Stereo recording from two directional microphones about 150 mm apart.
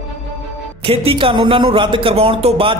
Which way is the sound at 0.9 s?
35° right (ahead or behind).